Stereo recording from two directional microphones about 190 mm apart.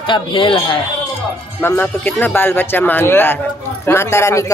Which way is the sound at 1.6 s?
10° left (ahead or behind).